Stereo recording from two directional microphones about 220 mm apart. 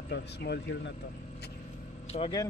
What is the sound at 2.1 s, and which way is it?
Speech, 25° left (ahead or behind).